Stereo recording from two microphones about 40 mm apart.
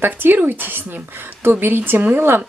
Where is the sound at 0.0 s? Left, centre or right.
Right.